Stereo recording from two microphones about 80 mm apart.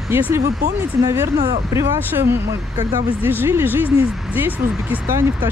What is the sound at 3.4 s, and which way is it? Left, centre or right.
Speech, right.